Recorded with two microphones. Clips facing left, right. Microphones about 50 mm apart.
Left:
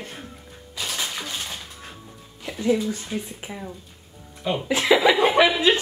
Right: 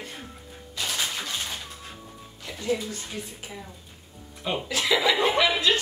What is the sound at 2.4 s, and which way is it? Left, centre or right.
Music, centre.